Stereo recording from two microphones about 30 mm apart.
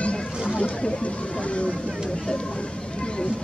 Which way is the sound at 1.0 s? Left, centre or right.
Left.